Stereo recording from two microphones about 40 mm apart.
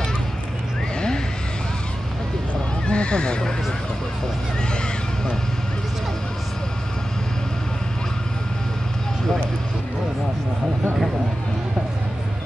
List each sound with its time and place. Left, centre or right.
2.9 s speech: left